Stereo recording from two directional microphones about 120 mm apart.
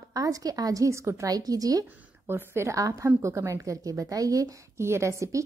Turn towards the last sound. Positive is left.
turn(degrees=-25)  # may be behind; listen again after turning